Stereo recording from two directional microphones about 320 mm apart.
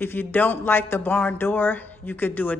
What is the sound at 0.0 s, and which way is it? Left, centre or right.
A woman's voice, centre.